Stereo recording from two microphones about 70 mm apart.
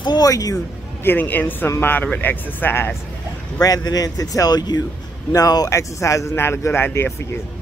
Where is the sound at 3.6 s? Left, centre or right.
Left.